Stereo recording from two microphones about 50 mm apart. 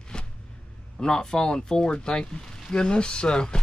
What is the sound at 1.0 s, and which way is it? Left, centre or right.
Speech, centre.